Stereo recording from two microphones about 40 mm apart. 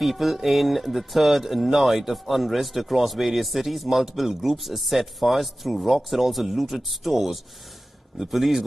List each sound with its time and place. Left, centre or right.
0.0 s a man's voice: centre